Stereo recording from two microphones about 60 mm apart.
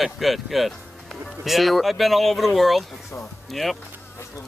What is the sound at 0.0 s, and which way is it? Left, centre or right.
Speech, centre.